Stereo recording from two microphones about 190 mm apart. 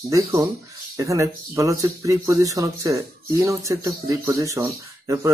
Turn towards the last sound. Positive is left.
turn(degrees=-15)  # may be behind; listen again after turning